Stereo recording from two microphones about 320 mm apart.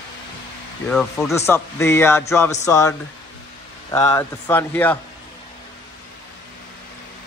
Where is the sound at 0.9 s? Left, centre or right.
Centre.